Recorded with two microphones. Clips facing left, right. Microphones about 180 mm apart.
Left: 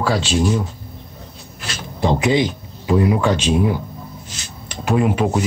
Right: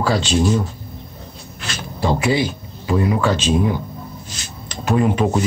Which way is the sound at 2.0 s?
20° left (ahead or behind).